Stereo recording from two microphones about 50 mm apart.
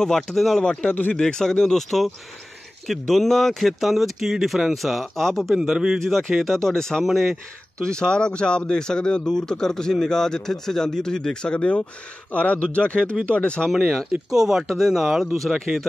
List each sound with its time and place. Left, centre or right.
0.0 s speech: centre
0.9 s speech: left
1.2 s speech: centre
5.6 s speech: centre
6.0 s speech: centre
7.0 s speech: centre
7.8 s speech: centre
11.5 s speech: left
14.3 s speech: centre